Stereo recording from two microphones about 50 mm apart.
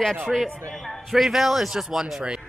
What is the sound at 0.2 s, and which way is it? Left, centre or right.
A man's voice, centre.